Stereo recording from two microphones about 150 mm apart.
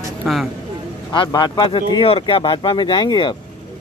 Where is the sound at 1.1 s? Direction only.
30° left (ahead or behind).